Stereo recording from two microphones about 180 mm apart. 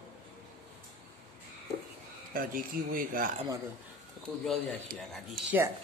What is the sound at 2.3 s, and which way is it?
Speech, 55° right (ahead or behind).